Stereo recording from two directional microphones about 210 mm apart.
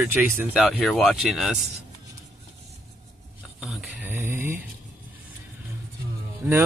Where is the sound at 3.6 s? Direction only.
5° right (ahead or behind).